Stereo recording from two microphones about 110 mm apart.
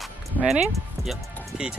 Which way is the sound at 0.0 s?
5° right (ahead or behind).